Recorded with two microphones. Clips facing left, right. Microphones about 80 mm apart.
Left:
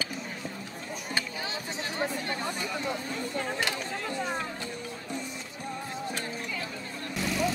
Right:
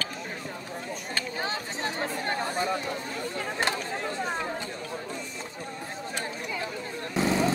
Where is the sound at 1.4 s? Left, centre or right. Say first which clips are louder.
Right 4 dB; right.